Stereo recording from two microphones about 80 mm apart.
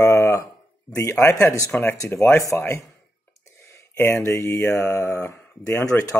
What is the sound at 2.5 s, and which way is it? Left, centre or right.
Speech, left.